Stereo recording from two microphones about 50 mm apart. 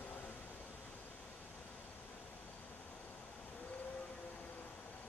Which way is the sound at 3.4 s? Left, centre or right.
Left.